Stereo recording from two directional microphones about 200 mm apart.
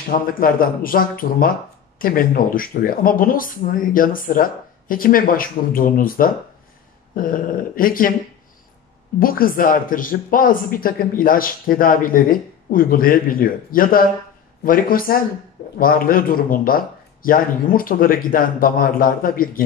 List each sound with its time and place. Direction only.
0.3 s speech: 45° left (ahead or behind)
9.2 s speech: 45° left (ahead or behind)